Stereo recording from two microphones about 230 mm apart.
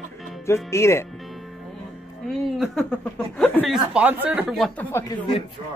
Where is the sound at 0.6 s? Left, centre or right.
Centre.